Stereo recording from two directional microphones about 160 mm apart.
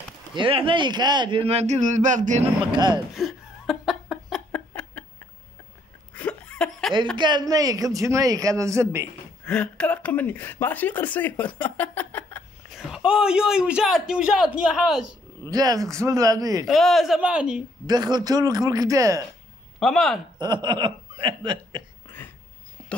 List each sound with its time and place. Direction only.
0.3 s a man's voice: 30° right (ahead or behind); by 2.4 s 50° right (ahead or behind)
2.7 s speech: 25° right (ahead or behind)
3.2 s laughter: centre (ahead or behind)
4.5 s a sound: 10° left (ahead or behind)
6.1 s a sound: 5° left (ahead or behind)
7.2 s speech: 25° right (ahead or behind)
9.5 s a woman's voice: 5° left (ahead or behind)
12.7 s a man's voice: 5° right (ahead or behind)
15.5 s speech: 25° right (ahead or behind)
16.6 s a man's voice: centre (ahead or behind)
17.8 s speech: 25° right (ahead or behind)
19.8 s a man's voice: 5° left (ahead or behind)
20.3 s speech: 25° right (ahead or behind)